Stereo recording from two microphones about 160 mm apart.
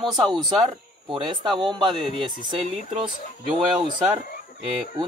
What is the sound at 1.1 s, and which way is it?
Speech, 30° right (ahead or behind).